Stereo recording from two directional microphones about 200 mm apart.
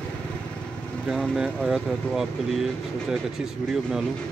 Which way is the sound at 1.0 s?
Centre (ahead or behind).